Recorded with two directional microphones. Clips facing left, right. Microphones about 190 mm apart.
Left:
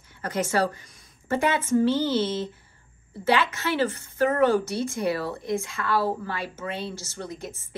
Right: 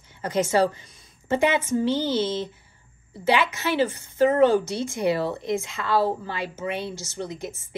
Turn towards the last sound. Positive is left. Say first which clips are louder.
# right 3 dB
turn(degrees=-20)  # may be behind; listen again after turning